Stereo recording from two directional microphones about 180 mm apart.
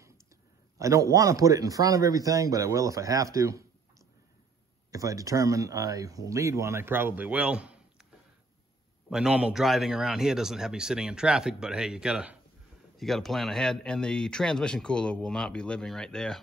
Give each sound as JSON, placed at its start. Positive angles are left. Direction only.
{"t": 0.7, "sound": "speech", "side_deg": -15}
{"t": 4.9, "sound": "speech", "side_deg": -20}
{"t": 9.1, "sound": "a man's voice", "side_deg": -5}